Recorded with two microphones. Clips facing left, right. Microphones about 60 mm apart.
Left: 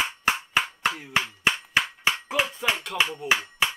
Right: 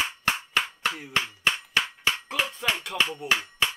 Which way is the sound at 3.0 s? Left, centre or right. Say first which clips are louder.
Left 1 dB; centre.